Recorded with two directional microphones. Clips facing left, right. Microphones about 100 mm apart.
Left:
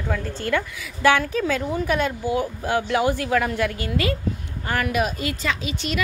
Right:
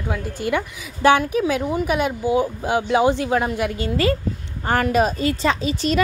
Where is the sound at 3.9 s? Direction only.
35° right (ahead or behind).